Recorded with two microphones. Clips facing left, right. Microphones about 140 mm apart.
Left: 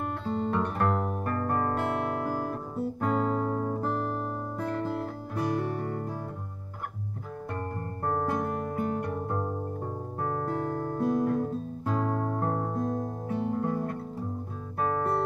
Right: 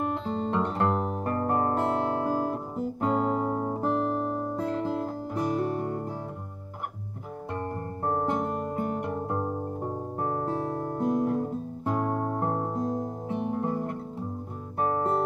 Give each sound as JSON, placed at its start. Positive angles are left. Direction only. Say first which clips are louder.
{"t": 0.1, "sound": "guitar", "louder": "right 1 dB", "side_deg": -20}
{"t": 3.0, "sound": "music", "louder": "right 2 dB", "side_deg": -20}
{"t": 7.5, "sound": "music", "louder": "right 4 dB", "side_deg": -25}